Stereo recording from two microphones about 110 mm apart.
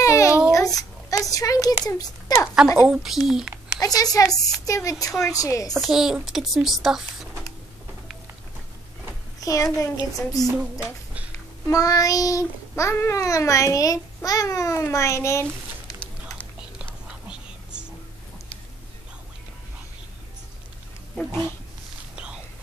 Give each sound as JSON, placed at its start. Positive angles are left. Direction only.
{"t": 0.0, "sound": "a sound", "side_deg": 30}
{"t": 2.9, "sound": "speech", "side_deg": -5}
{"t": 3.8, "sound": "a child's voice", "side_deg": 35}
{"t": 5.7, "sound": "a woman's voice", "side_deg": 0}
{"t": 9.4, "sound": "a child's voice", "side_deg": 30}
{"t": 10.5, "sound": "speech", "side_deg": -15}
{"t": 11.6, "sound": "babbling", "side_deg": 30}
{"t": 15.9, "sound": "music", "side_deg": 30}
{"t": 17.3, "sound": "whispering", "side_deg": -10}
{"t": 22.1, "sound": "whispering", "side_deg": -10}